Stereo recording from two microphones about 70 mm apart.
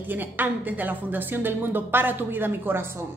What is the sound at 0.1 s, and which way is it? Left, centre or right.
A woman's voice, right.